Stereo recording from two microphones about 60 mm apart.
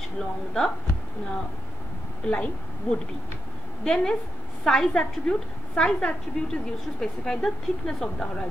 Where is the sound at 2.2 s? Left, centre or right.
Centre.